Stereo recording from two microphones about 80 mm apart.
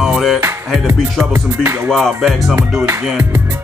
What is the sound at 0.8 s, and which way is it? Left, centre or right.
Music, right.